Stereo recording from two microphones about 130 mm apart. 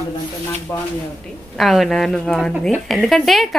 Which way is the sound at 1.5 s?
Centre (ahead or behind).